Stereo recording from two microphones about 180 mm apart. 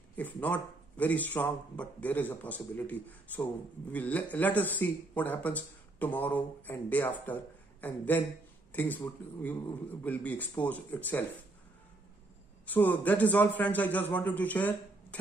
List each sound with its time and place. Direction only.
0.1 s speech: 10° left (ahead or behind)
10.0 s speech: 10° left (ahead or behind)
12.6 s speech: 10° left (ahead or behind)